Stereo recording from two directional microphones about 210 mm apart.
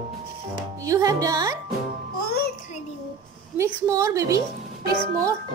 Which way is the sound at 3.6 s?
15° right (ahead or behind).